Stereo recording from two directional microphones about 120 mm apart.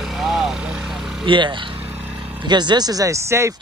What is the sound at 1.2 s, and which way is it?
Speech, 45° right (ahead or behind).